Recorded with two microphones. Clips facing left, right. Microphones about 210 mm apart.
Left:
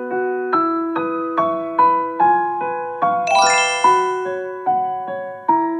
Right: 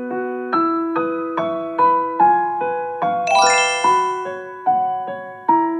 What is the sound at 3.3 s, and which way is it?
Jingle, centre (ahead or behind).